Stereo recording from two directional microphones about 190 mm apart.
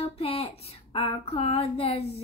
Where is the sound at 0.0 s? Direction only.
30° left (ahead or behind).